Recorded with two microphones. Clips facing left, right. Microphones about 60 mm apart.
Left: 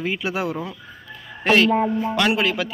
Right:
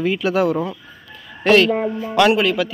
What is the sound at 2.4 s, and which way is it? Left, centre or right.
Speech, left.